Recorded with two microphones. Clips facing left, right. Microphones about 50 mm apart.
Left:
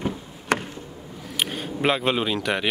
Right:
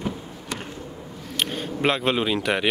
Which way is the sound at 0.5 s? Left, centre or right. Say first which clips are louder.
Left 9 dB; left.